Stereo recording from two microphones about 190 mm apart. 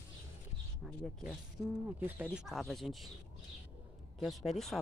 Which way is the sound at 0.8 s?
Centre (ahead or behind).